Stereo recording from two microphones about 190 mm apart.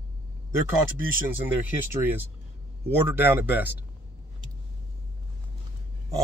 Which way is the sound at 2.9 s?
10° right (ahead or behind).